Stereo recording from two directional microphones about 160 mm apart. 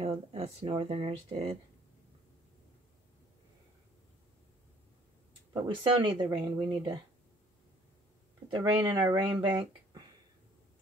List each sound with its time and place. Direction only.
0.0 s speech: 40° right (ahead or behind)
5.5 s speech: 30° right (ahead or behind)
8.5 s speech: 30° right (ahead or behind)